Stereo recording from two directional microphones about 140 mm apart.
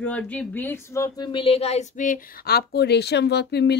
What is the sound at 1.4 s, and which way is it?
Speech, 45° left (ahead or behind).